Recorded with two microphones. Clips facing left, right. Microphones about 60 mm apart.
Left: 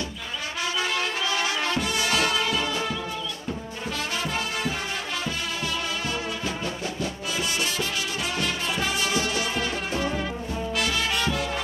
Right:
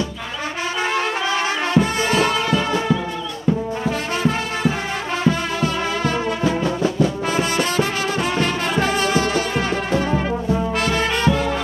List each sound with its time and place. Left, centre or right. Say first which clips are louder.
0.9 s music: right 6 dB; right
5.2 s music: right 10 dB; right
7.0 s brass instrument: right 10 dB; right